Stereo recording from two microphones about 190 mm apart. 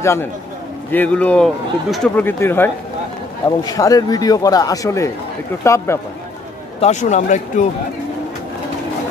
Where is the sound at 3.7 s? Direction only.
20° left (ahead or behind).